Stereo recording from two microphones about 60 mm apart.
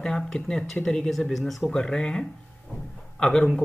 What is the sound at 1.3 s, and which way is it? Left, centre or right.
Speech, centre.